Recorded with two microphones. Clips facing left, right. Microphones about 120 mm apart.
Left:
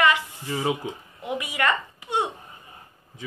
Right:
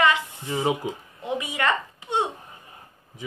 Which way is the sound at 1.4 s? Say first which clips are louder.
Left 1 dB; 25° right (ahead or behind).